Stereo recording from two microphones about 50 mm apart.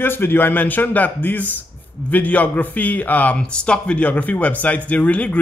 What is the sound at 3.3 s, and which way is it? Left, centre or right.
Speech, centre.